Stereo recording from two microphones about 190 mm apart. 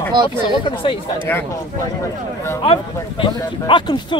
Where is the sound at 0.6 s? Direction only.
25° left (ahead or behind).